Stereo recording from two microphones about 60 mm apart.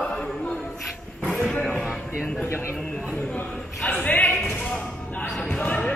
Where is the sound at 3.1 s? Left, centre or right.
Left.